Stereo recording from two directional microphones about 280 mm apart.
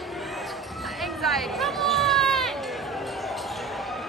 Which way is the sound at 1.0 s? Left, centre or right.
Centre.